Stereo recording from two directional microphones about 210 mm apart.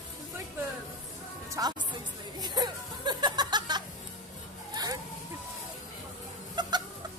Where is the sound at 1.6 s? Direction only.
15° right (ahead or behind).